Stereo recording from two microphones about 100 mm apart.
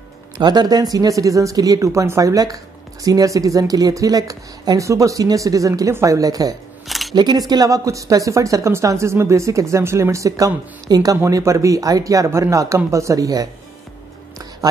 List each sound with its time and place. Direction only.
0.4 s speech: 45° right (ahead or behind)
6.9 s single-lens reflex camera: centre (ahead or behind)
7.2 s speech: 45° right (ahead or behind)